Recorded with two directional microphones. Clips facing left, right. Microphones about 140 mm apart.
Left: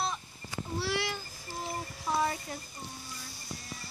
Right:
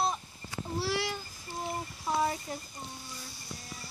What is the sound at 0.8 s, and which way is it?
Babbling, 35° right (ahead or behind).